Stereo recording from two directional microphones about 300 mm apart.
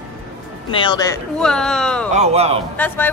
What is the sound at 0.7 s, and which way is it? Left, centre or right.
Speech, centre.